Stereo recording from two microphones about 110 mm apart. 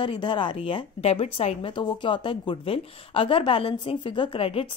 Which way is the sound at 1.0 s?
70° left (ahead or behind).